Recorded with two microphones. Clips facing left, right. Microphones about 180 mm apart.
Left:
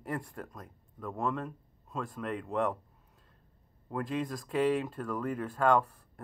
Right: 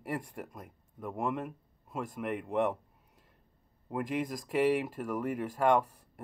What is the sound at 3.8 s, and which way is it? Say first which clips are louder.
Speech: even; 10° right (ahead or behind).